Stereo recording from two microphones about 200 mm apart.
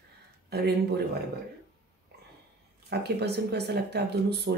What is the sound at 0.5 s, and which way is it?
Speech, 55° right (ahead or behind).